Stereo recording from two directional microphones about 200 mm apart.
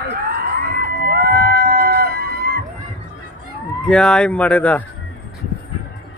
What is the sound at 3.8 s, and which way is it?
Speech, 5° left (ahead or behind).